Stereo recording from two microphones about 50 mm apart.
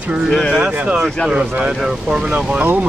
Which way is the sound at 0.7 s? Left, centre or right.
Right.